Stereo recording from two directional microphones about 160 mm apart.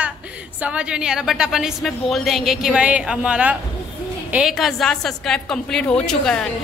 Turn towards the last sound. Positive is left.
turn(degrees=5)  # may be behind; listen again after turning